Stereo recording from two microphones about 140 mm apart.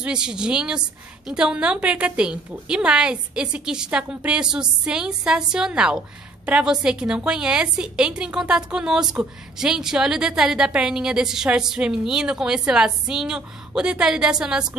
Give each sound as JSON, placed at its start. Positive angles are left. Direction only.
{"t": 0.0, "sound": "a woman's voice", "side_deg": -5}